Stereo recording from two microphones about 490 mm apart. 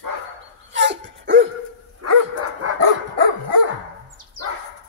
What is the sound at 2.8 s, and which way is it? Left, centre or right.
Dog, right.